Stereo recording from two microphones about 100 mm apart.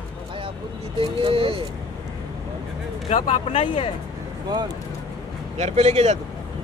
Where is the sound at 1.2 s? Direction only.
65° right (ahead or behind).